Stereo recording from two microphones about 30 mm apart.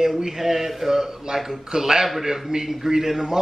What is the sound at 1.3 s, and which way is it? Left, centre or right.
A man's voice, right.